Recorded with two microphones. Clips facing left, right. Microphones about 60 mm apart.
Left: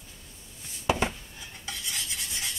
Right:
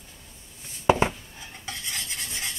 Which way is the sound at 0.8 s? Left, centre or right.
Right.